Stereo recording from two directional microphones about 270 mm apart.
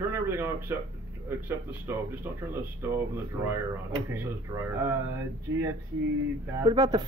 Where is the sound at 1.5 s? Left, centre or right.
Centre.